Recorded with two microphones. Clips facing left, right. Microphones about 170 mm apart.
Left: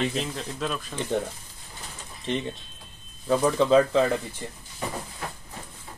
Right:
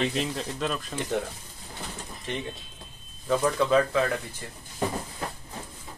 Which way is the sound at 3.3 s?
15° left (ahead or behind).